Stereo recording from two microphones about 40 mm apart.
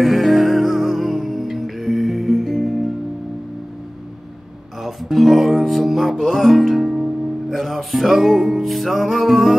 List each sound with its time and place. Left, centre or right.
0.0 s music: centre
4.8 s music: centre